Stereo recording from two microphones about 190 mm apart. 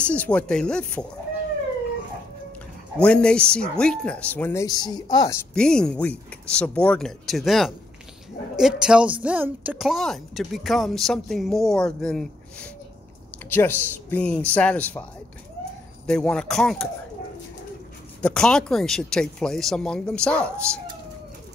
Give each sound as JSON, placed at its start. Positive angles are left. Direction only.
{"t": 0.0, "sound": "speech", "side_deg": 5}
{"t": 3.0, "sound": "a woman's voice", "side_deg": 5}
{"t": 5.5, "sound": "a woman's voice", "side_deg": 5}
{"t": 16.1, "sound": "a woman's voice", "side_deg": 5}
{"t": 18.2, "sound": "a woman's voice", "side_deg": 5}